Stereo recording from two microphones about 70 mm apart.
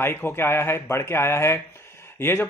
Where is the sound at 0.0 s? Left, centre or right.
Left.